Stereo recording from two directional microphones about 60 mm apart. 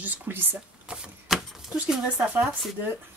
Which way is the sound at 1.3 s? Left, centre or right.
Centre.